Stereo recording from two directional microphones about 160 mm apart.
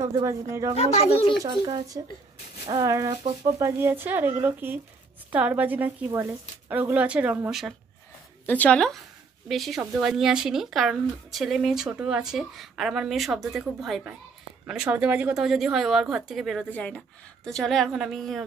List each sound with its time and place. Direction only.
0.0 s speech: 20° right (ahead or behind)
0.7 s speech: 40° left (ahead or behind)
1.4 s speech: 20° right (ahead or behind); by 7.7 s 5° right (ahead or behind)
8.5 s speech: 10° left (ahead or behind)